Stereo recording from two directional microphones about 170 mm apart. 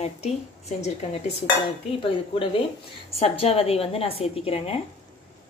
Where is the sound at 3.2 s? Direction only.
35° left (ahead or behind).